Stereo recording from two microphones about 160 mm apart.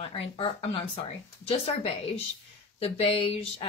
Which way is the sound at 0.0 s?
40° left (ahead or behind).